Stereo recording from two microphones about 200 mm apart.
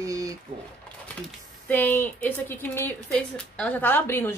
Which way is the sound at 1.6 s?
10° left (ahead or behind).